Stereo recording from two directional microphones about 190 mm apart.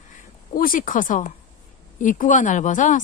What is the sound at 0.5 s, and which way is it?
Speech, 45° left (ahead or behind).